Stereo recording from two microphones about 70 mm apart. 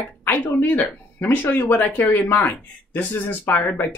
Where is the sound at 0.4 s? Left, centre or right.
Left.